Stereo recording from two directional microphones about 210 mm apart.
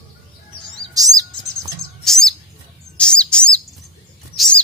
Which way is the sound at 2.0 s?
Centre (ahead or behind).